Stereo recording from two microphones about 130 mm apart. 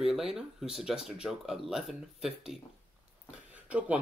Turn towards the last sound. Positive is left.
turn(degrees=-10)  # may be behind; listen again after turning